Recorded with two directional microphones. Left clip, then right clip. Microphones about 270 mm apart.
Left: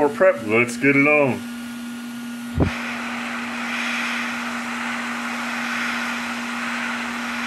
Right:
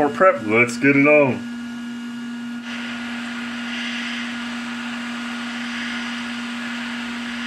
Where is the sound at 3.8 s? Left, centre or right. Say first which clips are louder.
Left 4 dB; left.